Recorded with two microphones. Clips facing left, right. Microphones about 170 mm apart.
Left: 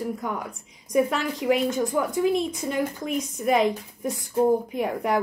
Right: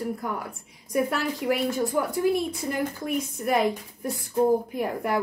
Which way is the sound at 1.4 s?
20° left (ahead or behind).